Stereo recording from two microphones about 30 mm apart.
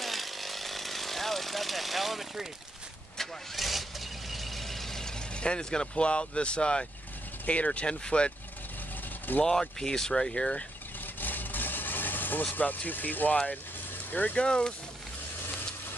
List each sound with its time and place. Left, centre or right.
0.0 s chainsaw: centre
3.5 s vehicle: centre
5.3 s speech: left
7.4 s speech: left
8.0 s speech: left
9.4 s speech: centre
11.1 s vehicle: left
12.5 s speech: left
14.3 s speech: left